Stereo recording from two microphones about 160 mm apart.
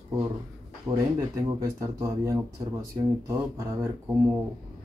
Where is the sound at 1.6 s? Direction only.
20° right (ahead or behind).